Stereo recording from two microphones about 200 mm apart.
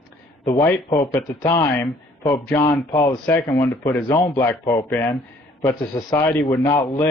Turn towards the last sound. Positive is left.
turn(degrees=15)  # may be behind; listen again after turning